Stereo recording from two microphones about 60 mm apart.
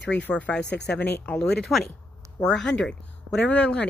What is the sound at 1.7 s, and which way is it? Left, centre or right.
A woman's voice, centre.